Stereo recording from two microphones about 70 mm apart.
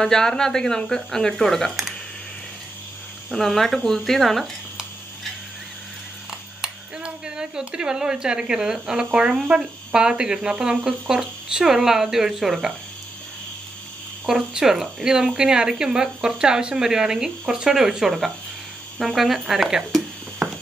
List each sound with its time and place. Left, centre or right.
0.0 s speech: centre
3.3 s speech: centre
6.6 s speech: centre
14.2 s speech: centre